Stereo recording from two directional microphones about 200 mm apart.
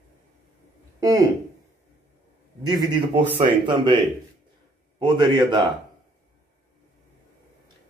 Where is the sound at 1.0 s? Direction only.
15° right (ahead or behind).